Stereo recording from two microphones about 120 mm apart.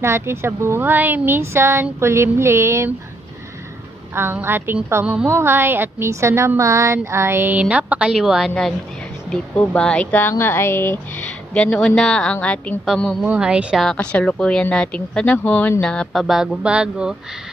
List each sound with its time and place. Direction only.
0.0 s a woman's voice: 20° right (ahead or behind)
4.1 s a woman's voice: 20° right (ahead or behind); by 13.2 s 5° left (ahead or behind)
13.2 s a woman's voice: 10° right (ahead or behind)
13.8 s speech: 10° left (ahead or behind); by 17.1 s 10° right (ahead or behind)